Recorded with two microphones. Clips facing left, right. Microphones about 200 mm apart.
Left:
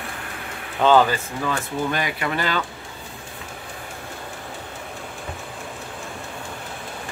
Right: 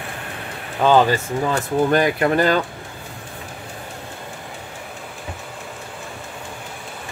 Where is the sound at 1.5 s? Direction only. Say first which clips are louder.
Right 7 dB; 50° right (ahead or behind).